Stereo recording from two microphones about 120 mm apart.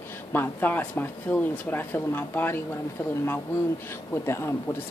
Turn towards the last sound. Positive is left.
turn(degrees=20)  # may be behind; listen again after turning